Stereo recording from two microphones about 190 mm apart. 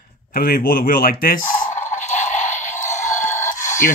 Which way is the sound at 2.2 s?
40° left (ahead or behind).